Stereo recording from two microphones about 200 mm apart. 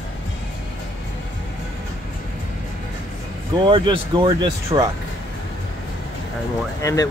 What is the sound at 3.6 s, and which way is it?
Speech, 25° right (ahead or behind).